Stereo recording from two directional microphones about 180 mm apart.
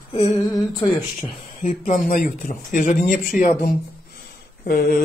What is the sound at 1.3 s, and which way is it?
Speech, 40° left (ahead or behind).